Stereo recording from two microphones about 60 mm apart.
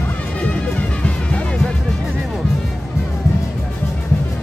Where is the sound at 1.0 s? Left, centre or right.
Left.